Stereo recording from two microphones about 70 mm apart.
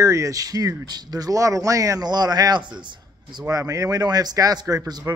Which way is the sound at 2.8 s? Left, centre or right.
Right.